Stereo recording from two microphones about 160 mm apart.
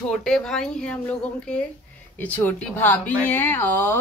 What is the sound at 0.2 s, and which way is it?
A woman's voice, 5° left (ahead or behind).